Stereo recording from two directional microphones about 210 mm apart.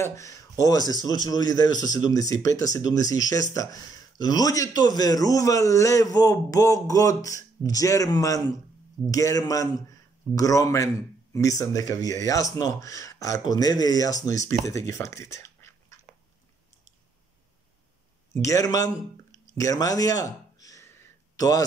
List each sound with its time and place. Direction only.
0.0 s a man's voice: 15° left (ahead or behind)
18.3 s a man's voice: 15° left (ahead or behind)
19.3 s a sound: 15° left (ahead or behind)